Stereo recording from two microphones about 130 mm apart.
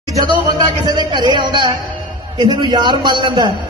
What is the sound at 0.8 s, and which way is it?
A man's voice, 35° right (ahead or behind).